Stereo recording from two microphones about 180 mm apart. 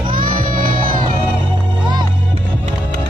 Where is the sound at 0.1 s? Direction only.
50° right (ahead or behind).